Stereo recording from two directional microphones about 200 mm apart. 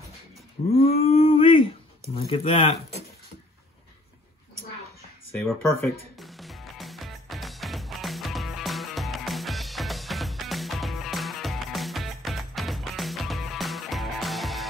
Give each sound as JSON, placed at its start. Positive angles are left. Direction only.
{"t": 0.7, "sound": "a sound", "side_deg": 30}
{"t": 2.1, "sound": "speech", "side_deg": 30}
{"t": 5.3, "sound": "music", "side_deg": 10}